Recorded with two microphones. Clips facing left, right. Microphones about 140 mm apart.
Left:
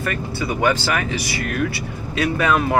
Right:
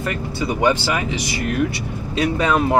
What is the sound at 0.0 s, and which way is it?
Speech, 20° right (ahead or behind).